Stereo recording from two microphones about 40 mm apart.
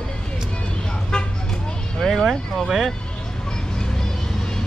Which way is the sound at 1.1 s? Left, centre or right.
Centre.